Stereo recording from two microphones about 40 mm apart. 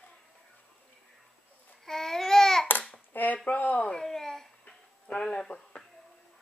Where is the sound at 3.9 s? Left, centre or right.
Centre.